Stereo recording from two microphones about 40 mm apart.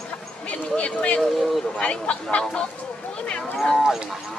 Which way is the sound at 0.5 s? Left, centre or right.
Left.